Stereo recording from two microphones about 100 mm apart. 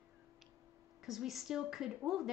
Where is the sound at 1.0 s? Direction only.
5° right (ahead or behind).